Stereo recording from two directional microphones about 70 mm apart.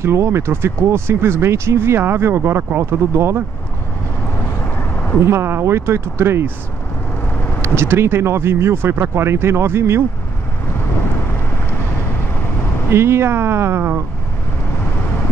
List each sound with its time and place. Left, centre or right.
0.0 s speech: right
4.7 s vehicle: left
5.2 s speech: right
7.6 s speech: right
12.9 s speech: right